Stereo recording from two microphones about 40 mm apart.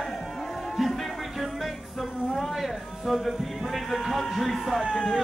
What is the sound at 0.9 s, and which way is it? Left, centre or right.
Music, centre.